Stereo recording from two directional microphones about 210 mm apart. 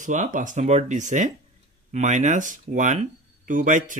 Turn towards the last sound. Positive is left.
turn(degrees=-40)  # may be behind; listen again after turning